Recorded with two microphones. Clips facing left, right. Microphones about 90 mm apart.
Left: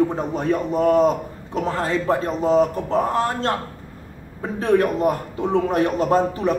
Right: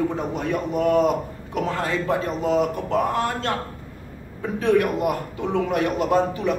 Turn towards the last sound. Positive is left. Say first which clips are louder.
# left 2 dB
turn(degrees=35)  # may be behind; listen again after turning